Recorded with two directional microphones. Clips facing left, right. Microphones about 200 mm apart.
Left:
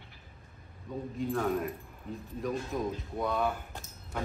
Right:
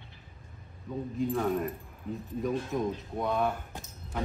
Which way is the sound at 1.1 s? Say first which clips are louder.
Right 2 dB; centre (ahead or behind).